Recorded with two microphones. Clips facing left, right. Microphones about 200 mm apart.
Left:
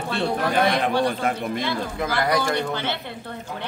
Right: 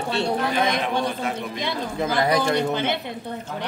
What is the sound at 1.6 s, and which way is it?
Speech, 20° right (ahead or behind).